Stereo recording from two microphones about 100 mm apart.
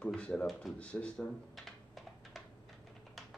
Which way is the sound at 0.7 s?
10° left (ahead or behind).